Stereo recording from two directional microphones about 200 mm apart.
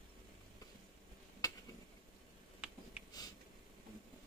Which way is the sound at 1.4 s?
20° left (ahead or behind).